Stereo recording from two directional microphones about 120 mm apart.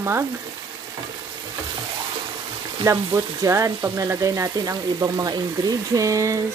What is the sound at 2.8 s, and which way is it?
Speech, 25° right (ahead or behind).